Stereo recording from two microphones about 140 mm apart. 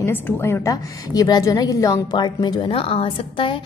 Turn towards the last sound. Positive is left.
turn(degrees=35)  # may be behind; listen again after turning